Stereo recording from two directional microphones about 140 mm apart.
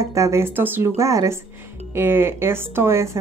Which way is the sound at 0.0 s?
20° right (ahead or behind).